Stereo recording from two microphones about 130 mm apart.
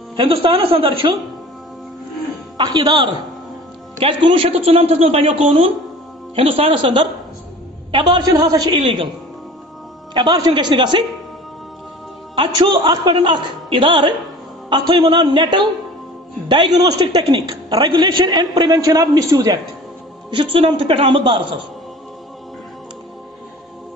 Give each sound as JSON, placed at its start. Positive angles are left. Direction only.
{"t": 0.1, "sound": "a man's voice", "side_deg": -40}
{"t": 2.5, "sound": "a woman's voice", "side_deg": -35}
{"t": 8.8, "sound": "a woman's voice", "side_deg": -40}
{"t": 10.1, "sound": "a woman's voice", "side_deg": -30}
{"t": 12.4, "sound": "a woman's voice", "side_deg": -35}
{"t": 20.2, "sound": "a man's voice", "side_deg": -40}